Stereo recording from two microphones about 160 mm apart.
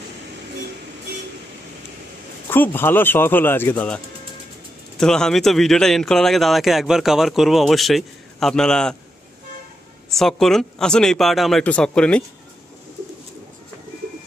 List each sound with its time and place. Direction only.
2.5 s a man's voice: 15° left (ahead or behind)
10.1 s a man's voice: centre (ahead or behind)